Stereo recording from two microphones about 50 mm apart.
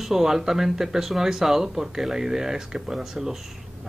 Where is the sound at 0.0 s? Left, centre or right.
Centre.